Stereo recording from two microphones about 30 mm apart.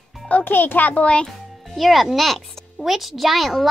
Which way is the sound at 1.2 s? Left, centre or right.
Centre.